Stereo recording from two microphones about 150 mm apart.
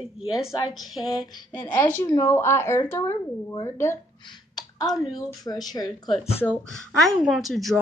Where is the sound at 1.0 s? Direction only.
25° left (ahead or behind).